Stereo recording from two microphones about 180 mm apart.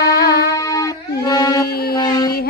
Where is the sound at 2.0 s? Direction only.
25° left (ahead or behind).